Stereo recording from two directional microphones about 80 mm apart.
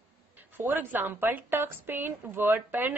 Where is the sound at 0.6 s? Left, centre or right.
Right.